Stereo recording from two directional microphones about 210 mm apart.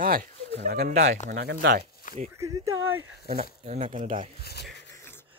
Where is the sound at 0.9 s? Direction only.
35° right (ahead or behind).